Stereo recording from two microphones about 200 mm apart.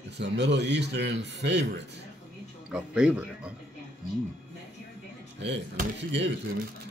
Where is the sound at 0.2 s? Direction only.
60° right (ahead or behind).